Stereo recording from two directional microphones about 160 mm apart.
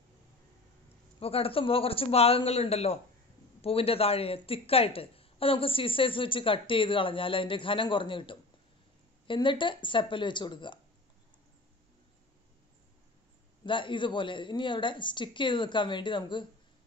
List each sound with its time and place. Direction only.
1.2 s a woman's voice: 35° left (ahead or behind)
13.7 s speech: 30° left (ahead or behind)